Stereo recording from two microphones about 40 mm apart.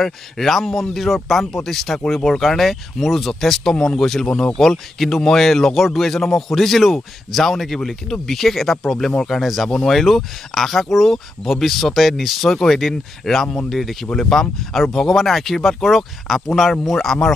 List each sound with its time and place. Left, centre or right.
0.0 s speech: centre
3.7 s speech: centre
4.0 s speech: centre